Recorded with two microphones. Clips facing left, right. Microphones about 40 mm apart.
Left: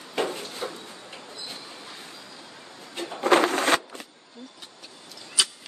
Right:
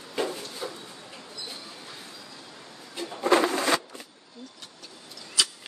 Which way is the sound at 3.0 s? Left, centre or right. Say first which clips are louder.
Left 2 dB; left.